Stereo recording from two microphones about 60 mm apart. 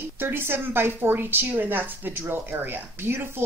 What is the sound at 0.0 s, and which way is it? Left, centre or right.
A woman's voice, right.